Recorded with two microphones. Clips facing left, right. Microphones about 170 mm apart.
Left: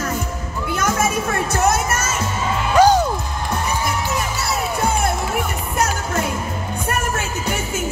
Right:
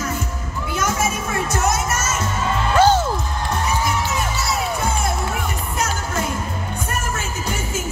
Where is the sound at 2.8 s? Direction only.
15° left (ahead or behind).